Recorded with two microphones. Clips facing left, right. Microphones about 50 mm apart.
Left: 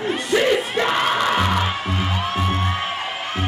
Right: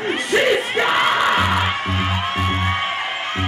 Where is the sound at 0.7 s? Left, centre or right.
Right.